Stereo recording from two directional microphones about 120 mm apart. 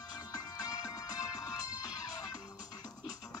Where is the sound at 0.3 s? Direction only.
30° left (ahead or behind).